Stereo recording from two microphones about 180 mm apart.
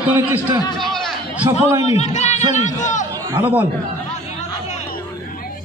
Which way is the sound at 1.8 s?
35° left (ahead or behind).